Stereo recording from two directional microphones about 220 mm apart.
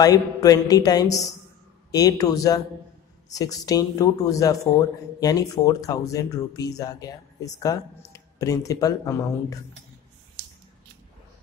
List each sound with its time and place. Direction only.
0.0 s a man's voice: 15° left (ahead or behind)